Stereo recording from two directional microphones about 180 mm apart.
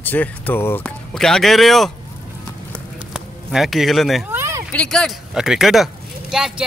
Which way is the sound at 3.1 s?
Centre (ahead or behind).